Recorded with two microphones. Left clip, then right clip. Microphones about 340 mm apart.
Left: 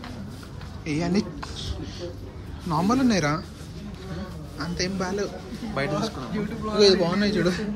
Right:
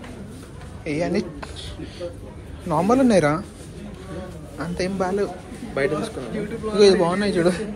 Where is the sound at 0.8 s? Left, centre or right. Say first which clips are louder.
Right 3 dB; centre.